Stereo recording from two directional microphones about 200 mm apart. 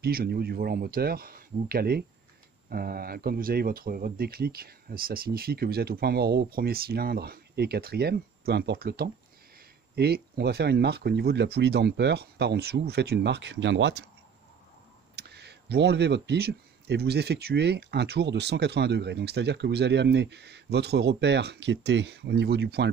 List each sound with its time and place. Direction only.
0.0 s speech: 50° right (ahead or behind)
15.1 s speech: 55° right (ahead or behind)